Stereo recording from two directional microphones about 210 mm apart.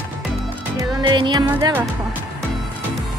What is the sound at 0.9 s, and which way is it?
Music, 20° right (ahead or behind).